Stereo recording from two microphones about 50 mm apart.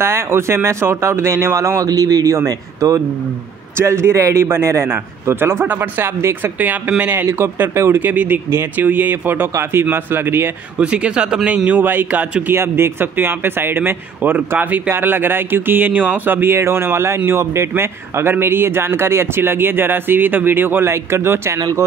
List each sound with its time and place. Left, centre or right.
0.0 s a man's voice: right
2.8 s speech: right
3.7 s a man's voice: right
7.9 s speech: right
10.8 s speech: right
11.5 s speech: right
11.8 s speech: right
12.4 s a man's voice: right